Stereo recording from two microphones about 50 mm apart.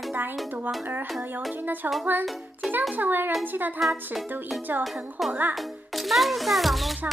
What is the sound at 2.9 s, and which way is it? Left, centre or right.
Speech, right.